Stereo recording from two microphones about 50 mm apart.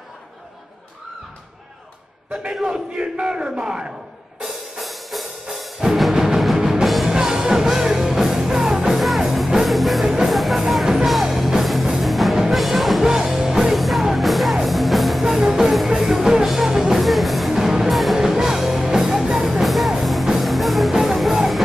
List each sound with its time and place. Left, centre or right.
2.5 s a man's voice: centre
4.4 s music: centre